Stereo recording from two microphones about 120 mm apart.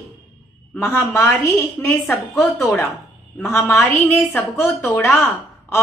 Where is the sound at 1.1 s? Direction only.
25° left (ahead or behind).